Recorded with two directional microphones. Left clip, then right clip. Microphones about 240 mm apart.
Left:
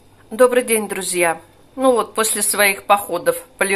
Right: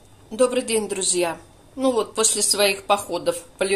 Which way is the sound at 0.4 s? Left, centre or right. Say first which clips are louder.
Left 6 dB; centre.